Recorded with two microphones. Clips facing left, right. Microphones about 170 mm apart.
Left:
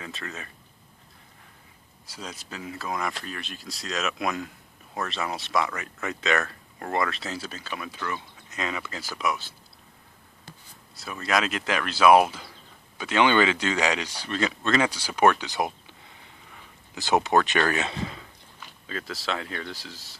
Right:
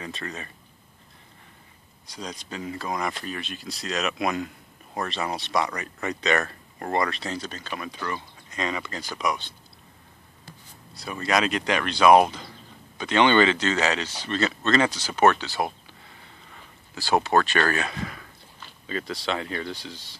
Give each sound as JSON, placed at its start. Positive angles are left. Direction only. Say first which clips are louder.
{"t": 0.0, "sound": "speech", "louder": "right 3 dB", "side_deg": 0}
{"t": 2.0, "sound": "speech", "louder": "right 3 dB", "side_deg": 5}
{"t": 11.0, "sound": "speech", "louder": "right 2 dB", "side_deg": 0}
{"t": 16.9, "sound": "speech", "louder": "even", "side_deg": 20}
{"t": 18.9, "sound": "speech", "louder": "right 3 dB", "side_deg": 0}